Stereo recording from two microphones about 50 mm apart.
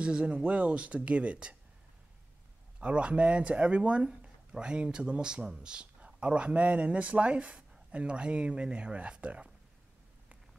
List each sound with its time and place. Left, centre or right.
0.0 s speech: right
2.8 s speech: right